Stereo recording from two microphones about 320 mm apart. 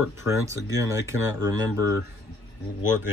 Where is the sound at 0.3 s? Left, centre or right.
Centre.